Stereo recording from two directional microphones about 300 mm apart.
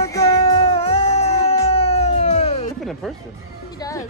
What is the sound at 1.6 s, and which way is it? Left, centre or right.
Cat, centre.